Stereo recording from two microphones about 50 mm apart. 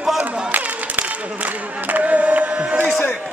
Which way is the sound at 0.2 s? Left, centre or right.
Right.